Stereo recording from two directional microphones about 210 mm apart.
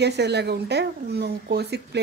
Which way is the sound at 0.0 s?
55° right (ahead or behind).